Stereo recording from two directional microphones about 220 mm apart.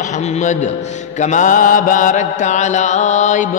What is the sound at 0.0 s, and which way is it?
A man's voice, 30° left (ahead or behind).